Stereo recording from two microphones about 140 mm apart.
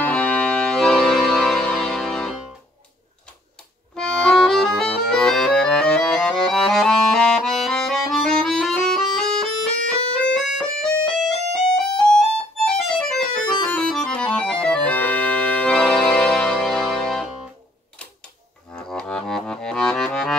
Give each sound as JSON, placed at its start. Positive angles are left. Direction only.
{"t": 0.0, "sound": "music", "side_deg": 10}
{"t": 3.9, "sound": "accordion", "side_deg": 5}
{"t": 12.0, "sound": "music", "side_deg": 5}
{"t": 13.7, "sound": "accordion", "side_deg": 5}
{"t": 18.8, "sound": "music", "side_deg": 5}